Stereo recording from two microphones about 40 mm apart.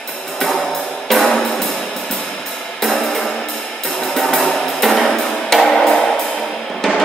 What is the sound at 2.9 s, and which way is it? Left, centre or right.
Music, centre.